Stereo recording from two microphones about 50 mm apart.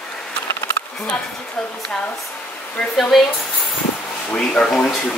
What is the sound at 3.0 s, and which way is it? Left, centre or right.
Speech, centre.